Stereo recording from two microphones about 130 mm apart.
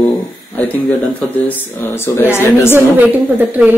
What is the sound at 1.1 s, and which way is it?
Speech, 15° left (ahead or behind).